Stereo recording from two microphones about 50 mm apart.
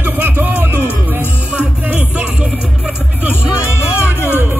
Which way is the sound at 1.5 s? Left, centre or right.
Right.